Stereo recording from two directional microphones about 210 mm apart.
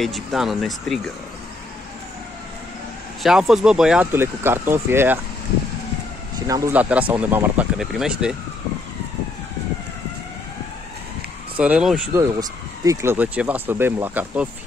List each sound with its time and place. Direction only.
0.0 s speech: centre (ahead or behind)
3.2 s speech: centre (ahead or behind)
6.4 s speech: 15° right (ahead or behind)
11.5 s speech: 5° right (ahead or behind)